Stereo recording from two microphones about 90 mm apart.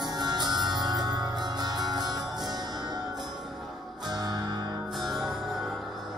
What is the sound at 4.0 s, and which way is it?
Music, 50° right (ahead or behind).